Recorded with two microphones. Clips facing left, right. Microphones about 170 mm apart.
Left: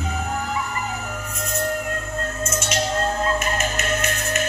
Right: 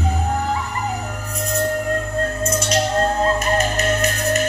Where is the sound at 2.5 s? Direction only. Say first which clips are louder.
Right 3 dB; 35° right (ahead or behind).